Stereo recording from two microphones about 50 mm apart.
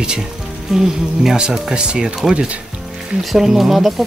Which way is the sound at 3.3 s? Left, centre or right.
Centre.